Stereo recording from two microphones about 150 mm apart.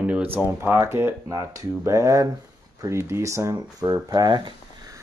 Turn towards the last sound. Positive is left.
turn(degrees=-25)  # may be behind; listen again after turning